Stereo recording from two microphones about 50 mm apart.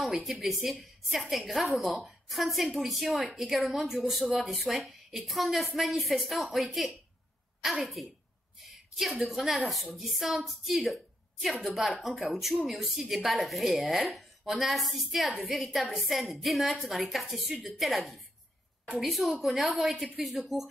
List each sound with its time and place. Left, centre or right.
0.0 s a woman's voice: centre
8.6 s a sound: centre
9.3 s a woman's voice: centre